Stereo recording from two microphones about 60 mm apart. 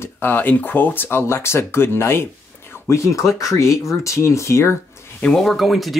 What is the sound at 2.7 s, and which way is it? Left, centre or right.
Speech, left.